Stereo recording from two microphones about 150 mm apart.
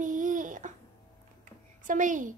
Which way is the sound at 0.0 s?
60° right (ahead or behind).